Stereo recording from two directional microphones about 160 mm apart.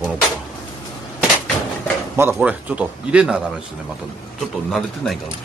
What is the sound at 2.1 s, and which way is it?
A man's voice, 10° right (ahead or behind).